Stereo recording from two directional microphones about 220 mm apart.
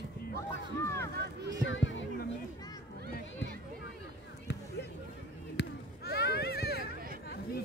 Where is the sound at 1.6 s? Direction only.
60° left (ahead or behind).